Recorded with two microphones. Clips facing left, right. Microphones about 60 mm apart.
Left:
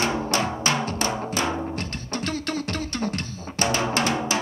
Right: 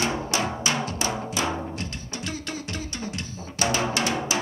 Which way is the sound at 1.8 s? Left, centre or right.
Left.